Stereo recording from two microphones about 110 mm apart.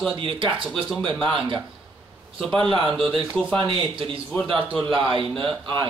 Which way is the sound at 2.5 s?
50° right (ahead or behind).